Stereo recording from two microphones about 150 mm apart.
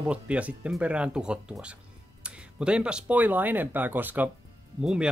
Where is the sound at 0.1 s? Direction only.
10° right (ahead or behind).